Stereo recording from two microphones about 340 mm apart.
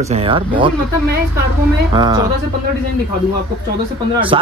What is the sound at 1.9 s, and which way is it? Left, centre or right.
Speech, centre.